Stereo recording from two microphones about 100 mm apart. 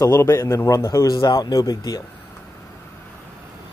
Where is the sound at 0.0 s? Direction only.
30° left (ahead or behind).